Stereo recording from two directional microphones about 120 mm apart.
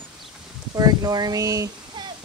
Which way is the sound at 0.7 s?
30° right (ahead or behind).